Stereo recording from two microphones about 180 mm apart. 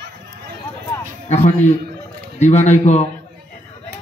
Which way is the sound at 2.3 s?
40° left (ahead or behind).